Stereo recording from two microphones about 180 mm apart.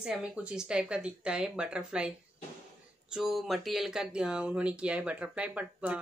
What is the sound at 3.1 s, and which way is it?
Speech, centre (ahead or behind).